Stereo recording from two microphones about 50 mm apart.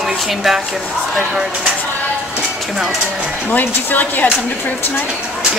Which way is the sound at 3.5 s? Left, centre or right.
Left.